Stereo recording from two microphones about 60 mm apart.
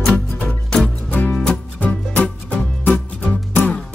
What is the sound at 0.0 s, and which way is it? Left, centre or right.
Music, centre.